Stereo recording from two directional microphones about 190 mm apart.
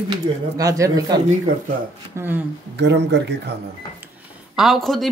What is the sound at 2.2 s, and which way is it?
Speech, 10° right (ahead or behind).